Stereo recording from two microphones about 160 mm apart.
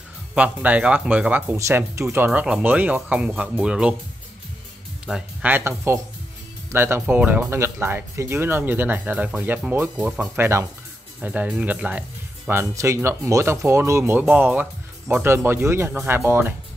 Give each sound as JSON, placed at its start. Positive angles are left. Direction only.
{"t": 0.3, "sound": "speech", "side_deg": -10}
{"t": 5.0, "sound": "speech", "side_deg": -5}